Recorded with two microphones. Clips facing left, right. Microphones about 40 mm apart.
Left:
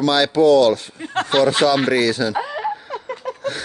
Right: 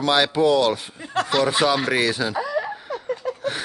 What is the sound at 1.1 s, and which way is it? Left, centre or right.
Speech, left.